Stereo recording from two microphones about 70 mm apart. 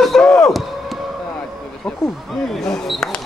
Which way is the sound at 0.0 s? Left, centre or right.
Centre.